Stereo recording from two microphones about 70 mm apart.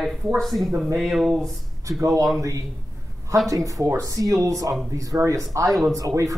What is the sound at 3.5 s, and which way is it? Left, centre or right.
Speech, right.